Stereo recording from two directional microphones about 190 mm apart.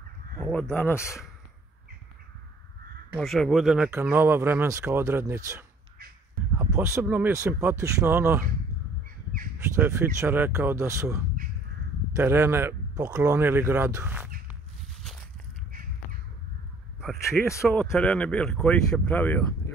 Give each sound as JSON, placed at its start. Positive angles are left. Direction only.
{"t": 0.4, "sound": "speech", "side_deg": 5}
{"t": 3.2, "sound": "speech", "side_deg": 0}
{"t": 9.8, "sound": "speech", "side_deg": -10}
{"t": 15.7, "sound": "crow", "side_deg": -45}
{"t": 17.6, "sound": "speech", "side_deg": 5}